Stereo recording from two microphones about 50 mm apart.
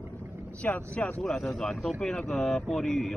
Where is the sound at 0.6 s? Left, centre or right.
Left.